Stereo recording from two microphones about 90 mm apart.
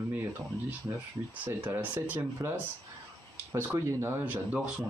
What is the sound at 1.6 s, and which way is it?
Speech, 20° right (ahead or behind).